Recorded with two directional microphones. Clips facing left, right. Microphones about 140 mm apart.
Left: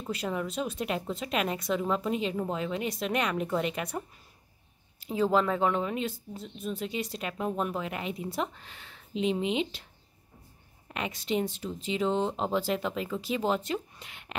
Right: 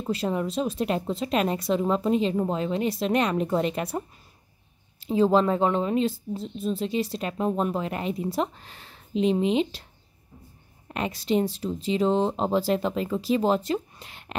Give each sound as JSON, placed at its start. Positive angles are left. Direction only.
{"t": 0.0, "sound": "speech", "side_deg": -30}
{"t": 5.0, "sound": "speech", "side_deg": -25}
{"t": 10.9, "sound": "speech", "side_deg": -35}